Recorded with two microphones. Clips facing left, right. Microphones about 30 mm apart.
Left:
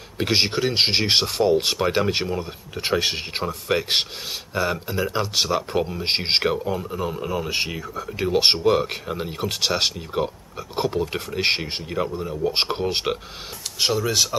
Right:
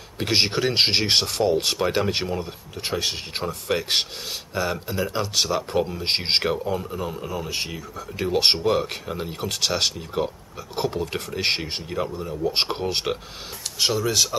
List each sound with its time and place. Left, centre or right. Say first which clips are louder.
0.2 s speech: left 1 dB; centre
2.7 s speech: left 4 dB; left
3.4 s speech: left 1 dB; centre